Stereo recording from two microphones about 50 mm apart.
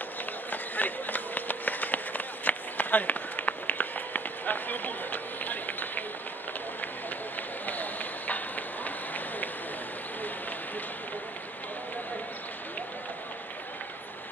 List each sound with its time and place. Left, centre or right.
0.5 s run: left
7.6 s run: left